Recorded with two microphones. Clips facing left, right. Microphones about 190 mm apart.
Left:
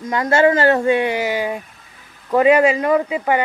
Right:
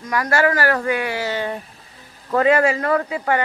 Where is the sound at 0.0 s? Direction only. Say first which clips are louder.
Left 4 dB; 25° left (ahead or behind).